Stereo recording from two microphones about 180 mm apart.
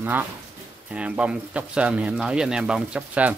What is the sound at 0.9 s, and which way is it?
Speech, 5° right (ahead or behind).